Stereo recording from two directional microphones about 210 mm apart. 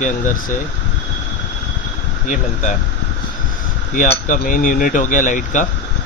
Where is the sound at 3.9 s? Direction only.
40° left (ahead or behind).